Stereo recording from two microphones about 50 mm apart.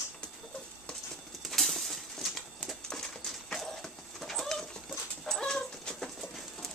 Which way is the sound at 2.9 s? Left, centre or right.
Centre.